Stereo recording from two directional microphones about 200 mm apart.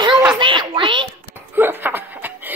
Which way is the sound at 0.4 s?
25° right (ahead or behind).